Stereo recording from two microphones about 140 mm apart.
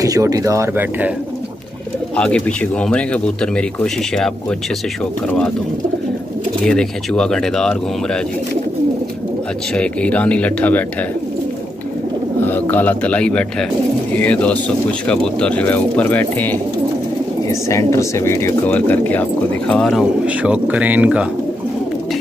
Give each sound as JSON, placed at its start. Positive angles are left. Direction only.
{"t": 0.0, "sound": "speech", "side_deg": -25}
{"t": 2.1, "sound": "speech", "side_deg": 5}
{"t": 6.6, "sound": "speech", "side_deg": 5}
{"t": 9.8, "sound": "speech", "side_deg": 10}
{"t": 12.4, "sound": "speech", "side_deg": 15}
{"t": 20.2, "sound": "speech", "side_deg": -10}